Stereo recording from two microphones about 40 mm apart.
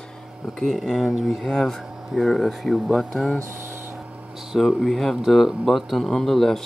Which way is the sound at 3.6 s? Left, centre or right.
Right.